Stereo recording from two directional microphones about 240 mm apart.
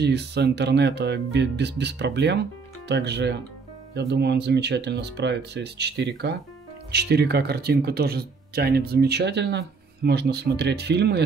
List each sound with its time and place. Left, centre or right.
0.0 s speech: right